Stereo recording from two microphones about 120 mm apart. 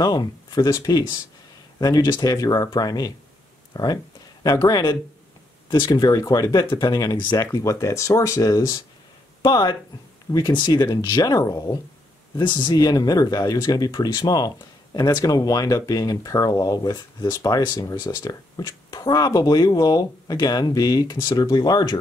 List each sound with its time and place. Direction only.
0.0 s speech: 35° left (ahead or behind)
12.4 s speech: 40° left (ahead or behind)